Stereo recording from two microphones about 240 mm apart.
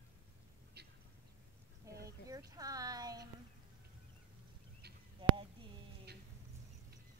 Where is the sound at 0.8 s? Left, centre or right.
Right.